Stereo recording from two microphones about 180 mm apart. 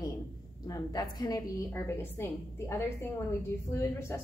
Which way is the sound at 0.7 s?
20° left (ahead or behind).